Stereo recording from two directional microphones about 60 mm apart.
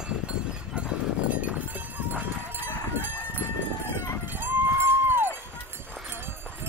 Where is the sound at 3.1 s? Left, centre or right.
Right.